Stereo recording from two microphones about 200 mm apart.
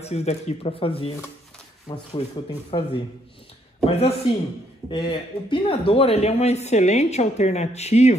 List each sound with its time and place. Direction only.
0.0 s speech: 35° left (ahead or behind)